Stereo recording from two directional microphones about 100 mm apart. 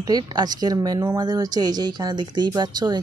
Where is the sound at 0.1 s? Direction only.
40° right (ahead or behind).